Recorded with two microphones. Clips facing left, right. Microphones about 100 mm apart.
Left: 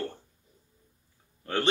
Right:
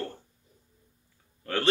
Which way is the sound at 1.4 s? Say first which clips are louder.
Left 1 dB; 20° left (ahead or behind).